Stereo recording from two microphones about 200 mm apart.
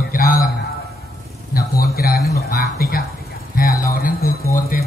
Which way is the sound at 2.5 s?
45° left (ahead or behind).